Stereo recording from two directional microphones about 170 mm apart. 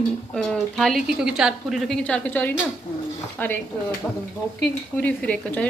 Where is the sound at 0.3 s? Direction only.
Centre (ahead or behind).